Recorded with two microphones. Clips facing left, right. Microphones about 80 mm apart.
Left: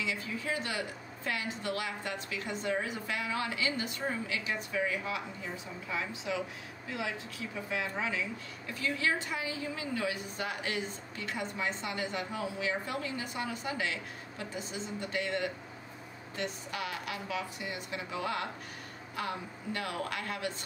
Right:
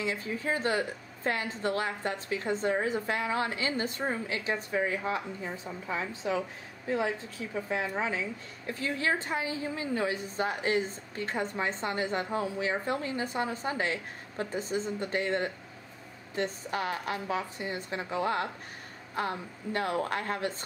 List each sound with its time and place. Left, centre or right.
0.0 s a woman's voice: right